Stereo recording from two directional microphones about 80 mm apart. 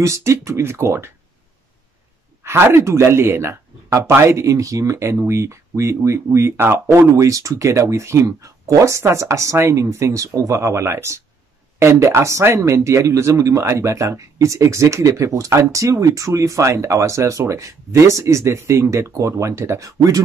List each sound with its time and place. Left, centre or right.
0.0 s speech: right
2.4 s a man's voice: right
7.2 s speech: right